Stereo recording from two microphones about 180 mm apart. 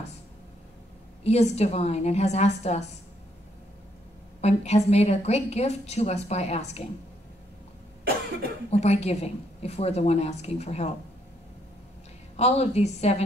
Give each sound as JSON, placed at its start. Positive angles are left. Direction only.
{"t": 1.2, "sound": "a woman's voice", "side_deg": 35}
{"t": 4.4, "sound": "a woman's voice", "side_deg": 35}
{"t": 8.6, "sound": "a woman's voice", "side_deg": 35}
{"t": 12.4, "sound": "a woman's voice", "side_deg": 35}